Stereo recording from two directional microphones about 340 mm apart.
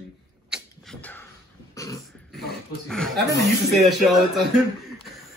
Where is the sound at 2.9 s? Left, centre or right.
Centre.